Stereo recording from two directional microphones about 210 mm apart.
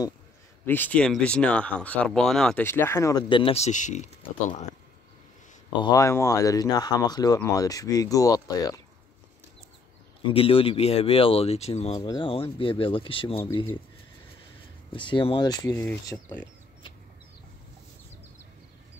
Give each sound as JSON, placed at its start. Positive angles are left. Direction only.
{"t": 0.7, "sound": "speech", "side_deg": 10}
{"t": 5.8, "sound": "speech", "side_deg": 15}
{"t": 10.2, "sound": "speech", "side_deg": 25}
{"t": 14.9, "sound": "speech", "side_deg": 25}
{"t": 15.7, "sound": "speech", "side_deg": 10}